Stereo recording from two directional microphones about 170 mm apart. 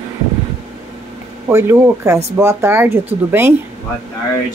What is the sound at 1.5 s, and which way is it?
Speech, 15° right (ahead or behind).